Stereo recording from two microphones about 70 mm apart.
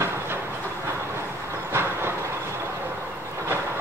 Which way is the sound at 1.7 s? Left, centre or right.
Right.